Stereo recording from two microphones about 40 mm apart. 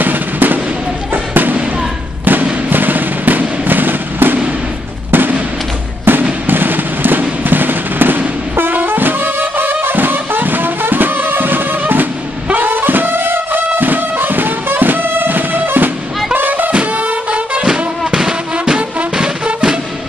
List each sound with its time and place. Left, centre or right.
0.0 s music: right
1.1 s basketball bounce: right
2.2 s fireworks: right
5.1 s music: right
6.1 s fireworks: right
6.4 s music: right
16.7 s music: right
18.1 s music: centre